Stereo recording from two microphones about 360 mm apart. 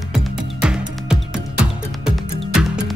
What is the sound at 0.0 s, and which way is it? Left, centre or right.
Music, centre.